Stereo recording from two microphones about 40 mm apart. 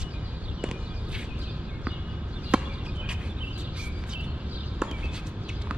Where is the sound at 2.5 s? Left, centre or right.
Right.